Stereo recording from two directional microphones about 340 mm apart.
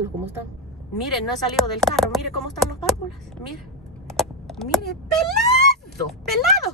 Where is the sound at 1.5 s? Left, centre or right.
Centre.